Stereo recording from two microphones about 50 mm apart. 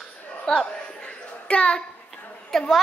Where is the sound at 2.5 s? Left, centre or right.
Centre.